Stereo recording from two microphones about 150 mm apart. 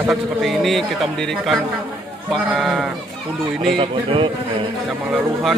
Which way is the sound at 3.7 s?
35° right (ahead or behind).